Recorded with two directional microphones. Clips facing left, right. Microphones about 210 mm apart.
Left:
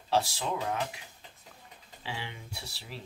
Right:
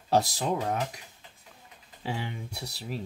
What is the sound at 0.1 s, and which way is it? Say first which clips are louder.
Speech: right 4 dB; 40° right (ahead or behind).